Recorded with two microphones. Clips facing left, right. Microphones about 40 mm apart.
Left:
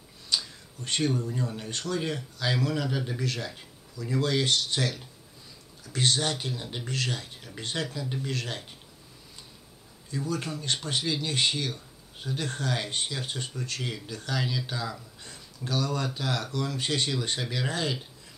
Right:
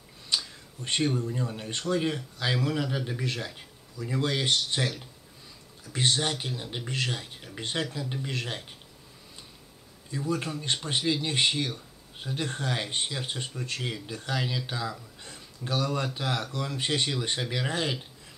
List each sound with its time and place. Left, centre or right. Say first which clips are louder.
0.3 s a sound: even; right
0.8 s speech: even; right
6.9 s speech: even; right
10.1 s speech: right 1 dB; right